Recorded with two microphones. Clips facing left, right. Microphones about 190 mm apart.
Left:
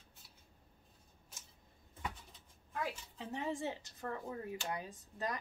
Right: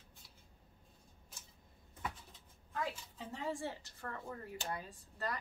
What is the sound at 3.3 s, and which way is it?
A woman's voice, 20° left (ahead or behind).